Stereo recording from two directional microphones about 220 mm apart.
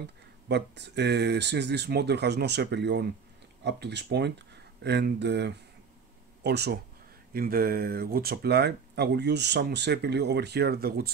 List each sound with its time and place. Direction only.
0.0 s speech: 50° right (ahead or behind)